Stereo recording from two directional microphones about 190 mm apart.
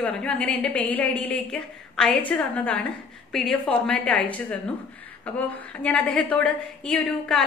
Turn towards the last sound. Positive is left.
turn(degrees=5)  # may be behind; listen again after turning